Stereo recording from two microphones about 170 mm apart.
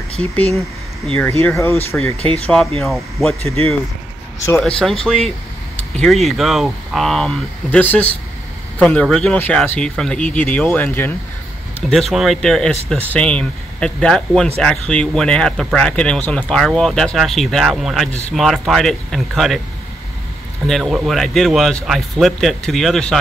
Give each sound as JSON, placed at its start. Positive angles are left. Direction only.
{"t": 0.6, "sound": "a sound", "side_deg": 0}
{"t": 1.4, "sound": "speech", "side_deg": 15}
{"t": 2.4, "sound": "speech", "side_deg": 5}
{"t": 4.6, "sound": "speech", "side_deg": 5}
{"t": 8.7, "sound": "speech", "side_deg": 0}
{"t": 20.6, "sound": "speech", "side_deg": 0}